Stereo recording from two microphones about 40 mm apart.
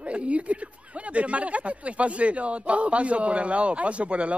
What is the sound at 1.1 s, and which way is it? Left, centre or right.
A man's voice, right.